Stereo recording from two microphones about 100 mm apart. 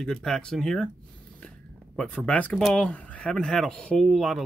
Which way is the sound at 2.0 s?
10° left (ahead or behind).